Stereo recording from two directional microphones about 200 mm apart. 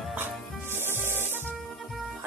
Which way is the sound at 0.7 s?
10° right (ahead or behind).